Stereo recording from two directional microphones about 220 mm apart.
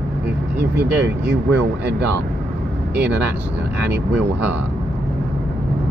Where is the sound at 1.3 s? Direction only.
50° right (ahead or behind).